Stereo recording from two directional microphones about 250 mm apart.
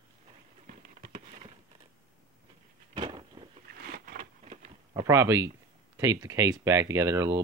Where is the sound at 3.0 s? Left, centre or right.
Centre.